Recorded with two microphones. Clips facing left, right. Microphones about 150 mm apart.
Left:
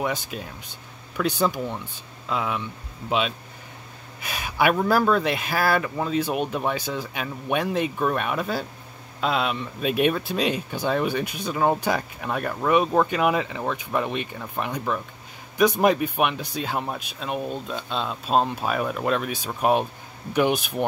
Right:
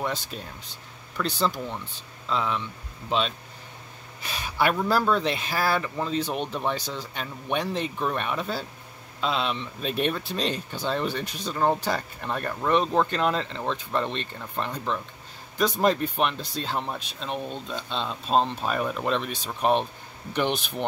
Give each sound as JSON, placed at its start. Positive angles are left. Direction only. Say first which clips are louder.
{"t": 0.0, "sound": "speech", "louder": "left 3 dB", "side_deg": 5}